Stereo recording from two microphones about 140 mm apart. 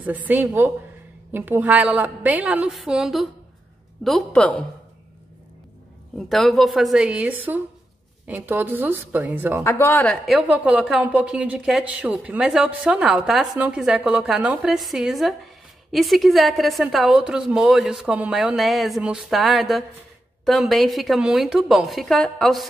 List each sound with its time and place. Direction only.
0.0 s a woman's voice: 10° right (ahead or behind); by 4.6 s 10° left (ahead or behind)
6.1 s a woman's voice: centre (ahead or behind); by 9.6 s 15° right (ahead or behind)
9.6 s a woman's voice: 20° left (ahead or behind)
10.2 s a woman's voice: 5° right (ahead or behind)